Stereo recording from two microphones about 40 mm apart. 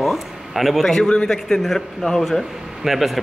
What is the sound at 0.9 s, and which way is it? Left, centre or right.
A man's voice, left.